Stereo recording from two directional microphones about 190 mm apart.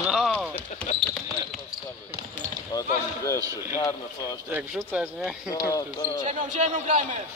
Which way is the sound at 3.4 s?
15° right (ahead or behind).